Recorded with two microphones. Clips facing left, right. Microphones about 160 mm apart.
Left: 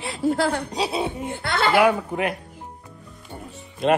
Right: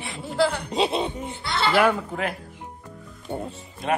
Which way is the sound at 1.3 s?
55° left (ahead or behind).